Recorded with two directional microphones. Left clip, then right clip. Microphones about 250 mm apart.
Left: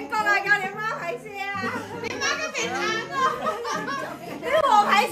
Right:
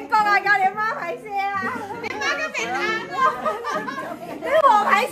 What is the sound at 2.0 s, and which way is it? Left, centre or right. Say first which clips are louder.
Children playing: right 2 dB; right.